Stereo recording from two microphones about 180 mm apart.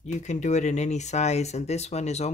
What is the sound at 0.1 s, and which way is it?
Speech, 40° left (ahead or behind).